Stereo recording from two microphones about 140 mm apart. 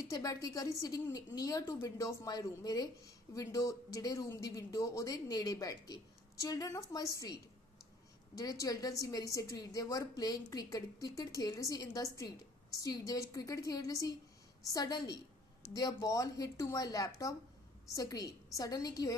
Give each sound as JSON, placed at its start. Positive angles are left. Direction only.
{"t": 0.1, "sound": "a woman's voice", "side_deg": 25}
{"t": 8.4, "sound": "a woman's voice", "side_deg": 25}